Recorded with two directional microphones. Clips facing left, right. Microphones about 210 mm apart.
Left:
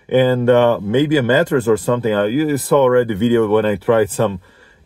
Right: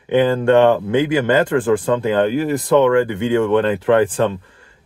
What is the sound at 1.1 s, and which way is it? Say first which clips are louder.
Speech: left 1 dB; 10° left (ahead or behind).